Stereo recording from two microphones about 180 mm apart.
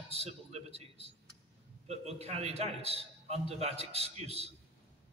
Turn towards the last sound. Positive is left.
turn(degrees=-35)  # may be behind; listen again after turning